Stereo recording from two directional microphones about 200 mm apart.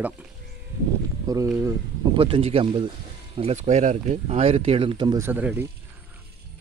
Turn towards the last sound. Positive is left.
turn(degrees=-10)  # may be behind; listen again after turning